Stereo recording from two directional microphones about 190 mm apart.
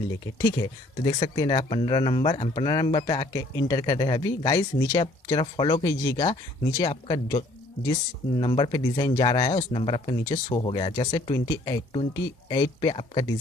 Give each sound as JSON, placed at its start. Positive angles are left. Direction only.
{"t": 0.4, "sound": "speech", "side_deg": 20}